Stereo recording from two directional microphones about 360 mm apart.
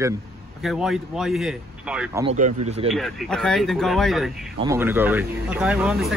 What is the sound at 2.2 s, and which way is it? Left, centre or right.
Speech, centre.